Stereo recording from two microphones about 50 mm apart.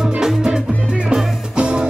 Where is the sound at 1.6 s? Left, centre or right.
Right.